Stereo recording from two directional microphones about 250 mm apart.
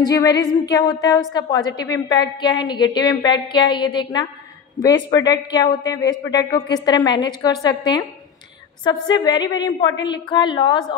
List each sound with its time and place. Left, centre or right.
0.0 s a woman's voice: centre